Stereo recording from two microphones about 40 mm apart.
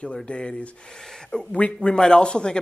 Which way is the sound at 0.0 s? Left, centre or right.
Left.